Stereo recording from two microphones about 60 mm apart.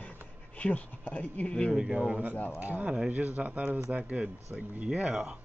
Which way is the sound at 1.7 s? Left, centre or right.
Centre.